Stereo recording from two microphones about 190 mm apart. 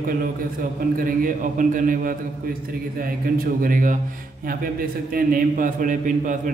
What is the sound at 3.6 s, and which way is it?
A man's voice, 45° right (ahead or behind).